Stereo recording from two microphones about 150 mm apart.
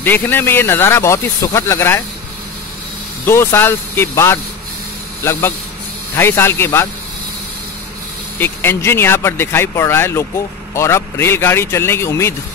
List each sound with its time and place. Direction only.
0.0 s speech: 15° left (ahead or behind)
3.3 s speech: 15° left (ahead or behind)
8.4 s speech: 15° left (ahead or behind)